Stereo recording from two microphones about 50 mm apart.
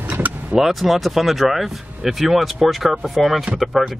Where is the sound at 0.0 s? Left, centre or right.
Right.